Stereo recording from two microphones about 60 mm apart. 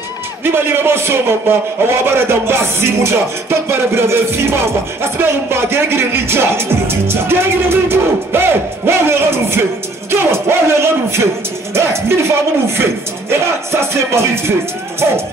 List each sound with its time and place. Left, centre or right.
0.4 s speech: right